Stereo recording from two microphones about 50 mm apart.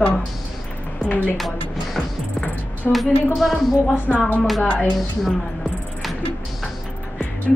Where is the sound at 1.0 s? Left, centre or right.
Left.